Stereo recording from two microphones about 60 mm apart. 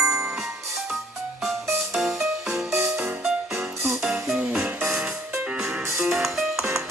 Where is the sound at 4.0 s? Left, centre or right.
Centre.